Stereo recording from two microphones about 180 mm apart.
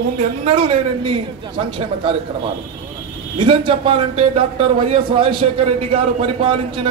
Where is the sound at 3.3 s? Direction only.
30° right (ahead or behind).